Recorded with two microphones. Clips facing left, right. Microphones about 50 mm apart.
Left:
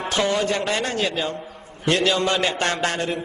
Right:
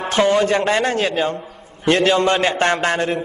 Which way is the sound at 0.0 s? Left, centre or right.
Right.